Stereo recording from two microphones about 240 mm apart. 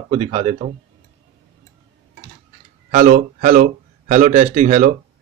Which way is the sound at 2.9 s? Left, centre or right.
Right.